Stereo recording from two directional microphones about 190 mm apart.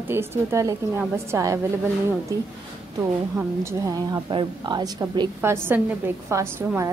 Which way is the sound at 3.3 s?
15° right (ahead or behind).